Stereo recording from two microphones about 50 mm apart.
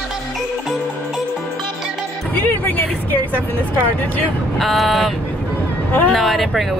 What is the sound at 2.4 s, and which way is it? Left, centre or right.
Vehicle, left.